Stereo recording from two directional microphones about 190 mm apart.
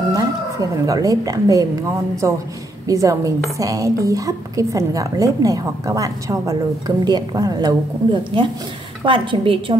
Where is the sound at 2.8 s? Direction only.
15° right (ahead or behind).